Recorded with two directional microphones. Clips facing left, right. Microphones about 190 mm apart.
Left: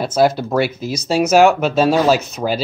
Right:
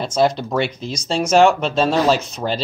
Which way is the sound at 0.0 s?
5° left (ahead or behind).